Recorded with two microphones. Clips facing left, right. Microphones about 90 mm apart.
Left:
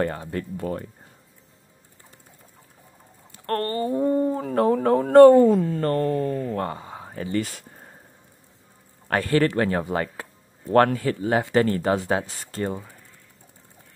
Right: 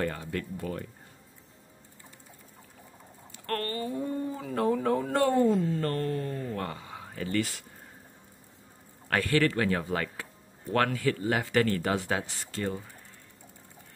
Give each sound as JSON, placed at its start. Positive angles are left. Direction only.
{"t": 0.0, "sound": "speech", "side_deg": 35}
{"t": 3.3, "sound": "speech", "side_deg": 35}
{"t": 5.8, "sound": "speech", "side_deg": 40}
{"t": 9.1, "sound": "speech", "side_deg": 35}